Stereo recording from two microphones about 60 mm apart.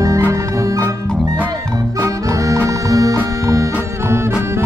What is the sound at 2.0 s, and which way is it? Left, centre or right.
Music, right.